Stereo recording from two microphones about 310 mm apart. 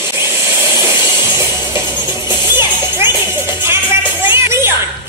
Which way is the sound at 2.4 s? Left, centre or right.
Centre.